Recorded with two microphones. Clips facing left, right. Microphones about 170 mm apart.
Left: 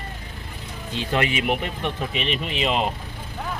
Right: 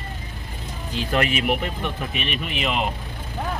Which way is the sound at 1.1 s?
25° left (ahead or behind).